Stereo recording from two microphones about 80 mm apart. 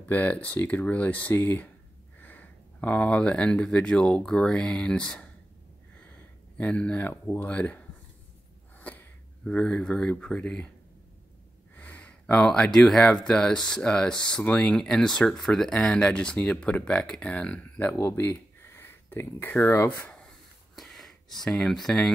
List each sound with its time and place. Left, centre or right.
0.0 s speech: centre
8.7 s a sound: left
9.4 s speech: centre
11.7 s speech: left
17.9 s speech: left
20.7 s a sound: centre
21.5 s speech: centre